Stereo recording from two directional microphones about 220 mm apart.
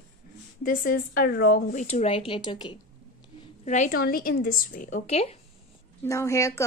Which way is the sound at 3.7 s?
35° left (ahead or behind).